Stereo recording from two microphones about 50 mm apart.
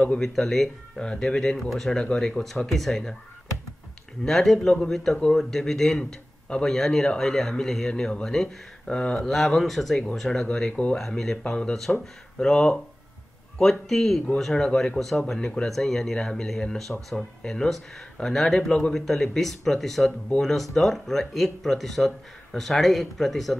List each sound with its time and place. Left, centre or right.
0.2 s speech: centre
4.2 s speech: centre